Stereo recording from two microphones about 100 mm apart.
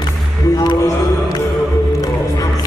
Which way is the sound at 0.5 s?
45° left (ahead or behind).